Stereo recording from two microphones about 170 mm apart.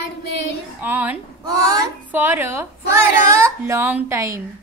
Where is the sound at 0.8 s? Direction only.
10° right (ahead or behind).